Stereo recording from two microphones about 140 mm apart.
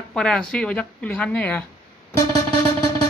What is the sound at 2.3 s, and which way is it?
Music, 30° left (ahead or behind).